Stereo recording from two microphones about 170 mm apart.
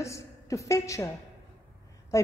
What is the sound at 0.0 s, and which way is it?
A woman's voice, 15° left (ahead or behind).